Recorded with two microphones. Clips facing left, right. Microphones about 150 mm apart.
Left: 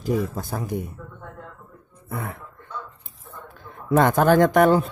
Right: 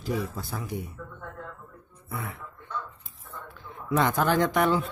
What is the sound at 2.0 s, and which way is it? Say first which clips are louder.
Speech: left 5 dB; 45° left (ahead or behind).